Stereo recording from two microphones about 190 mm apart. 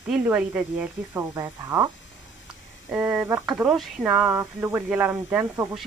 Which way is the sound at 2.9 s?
5° right (ahead or behind).